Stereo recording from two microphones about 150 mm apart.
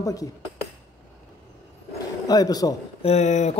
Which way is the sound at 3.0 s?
45° left (ahead or behind).